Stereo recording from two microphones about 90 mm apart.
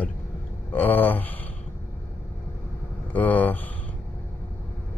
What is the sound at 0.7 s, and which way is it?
Speech, 20° left (ahead or behind).